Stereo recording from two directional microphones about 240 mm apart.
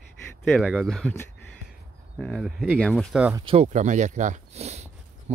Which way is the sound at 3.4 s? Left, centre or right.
Right.